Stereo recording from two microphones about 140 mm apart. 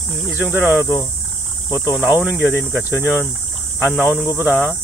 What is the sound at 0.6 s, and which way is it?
Speech, 15° right (ahead or behind).